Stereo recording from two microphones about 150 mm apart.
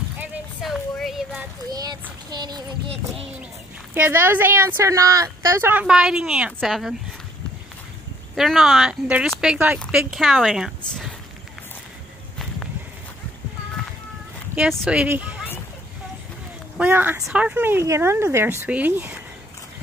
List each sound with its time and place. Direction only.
0.6 s a sound: centre (ahead or behind)
1.7 s a child's voice: 25° right (ahead or behind)
3.9 s a woman's voice: 15° right (ahead or behind)
8.4 s a woman's voice: centre (ahead or behind)
14.7 s a woman's voice: 5° right (ahead or behind)
16.7 s a woman's voice: 10° right (ahead or behind)